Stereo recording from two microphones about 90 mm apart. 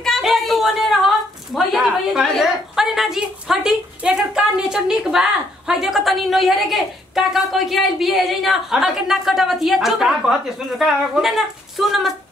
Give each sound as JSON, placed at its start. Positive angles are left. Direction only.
{"t": 0.0, "sound": "a woman's voice", "side_deg": 0}